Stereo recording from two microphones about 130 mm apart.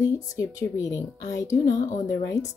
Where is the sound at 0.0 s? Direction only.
25° left (ahead or behind).